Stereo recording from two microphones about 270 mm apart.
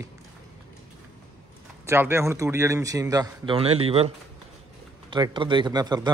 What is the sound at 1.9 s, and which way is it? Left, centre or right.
Speech, centre.